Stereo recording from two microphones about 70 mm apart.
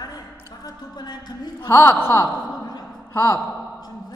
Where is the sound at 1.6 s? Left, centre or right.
Left.